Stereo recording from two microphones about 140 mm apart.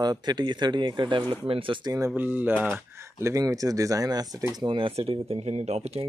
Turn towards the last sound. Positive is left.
turn(degrees=-45)  # may be behind; listen again after turning